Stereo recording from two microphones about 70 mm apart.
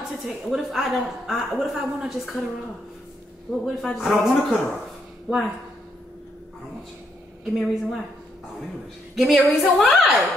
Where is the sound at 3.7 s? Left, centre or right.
Centre.